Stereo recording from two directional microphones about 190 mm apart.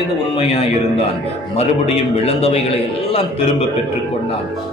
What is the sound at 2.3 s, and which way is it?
Speech, 30° left (ahead or behind).